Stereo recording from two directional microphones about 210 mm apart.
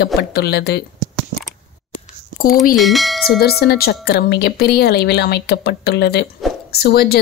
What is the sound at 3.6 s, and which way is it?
Speech, 50° left (ahead or behind).